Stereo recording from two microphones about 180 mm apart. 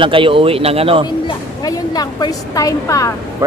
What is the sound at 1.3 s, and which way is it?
A woman's voice, 20° left (ahead or behind).